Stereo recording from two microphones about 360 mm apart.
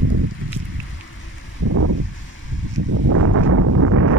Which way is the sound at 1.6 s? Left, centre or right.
Right.